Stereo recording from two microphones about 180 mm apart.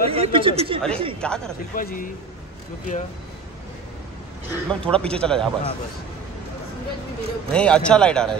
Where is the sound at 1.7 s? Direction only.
50° left (ahead or behind).